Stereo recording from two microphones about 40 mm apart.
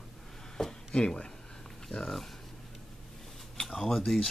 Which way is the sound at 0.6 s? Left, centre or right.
Centre.